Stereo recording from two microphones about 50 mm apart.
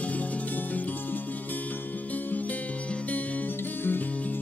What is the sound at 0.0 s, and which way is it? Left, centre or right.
Music, left.